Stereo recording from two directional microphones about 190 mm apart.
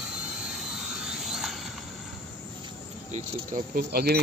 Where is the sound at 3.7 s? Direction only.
55° right (ahead or behind).